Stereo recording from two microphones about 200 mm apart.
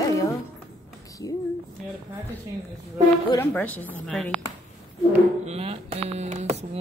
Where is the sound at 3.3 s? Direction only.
10° left (ahead or behind).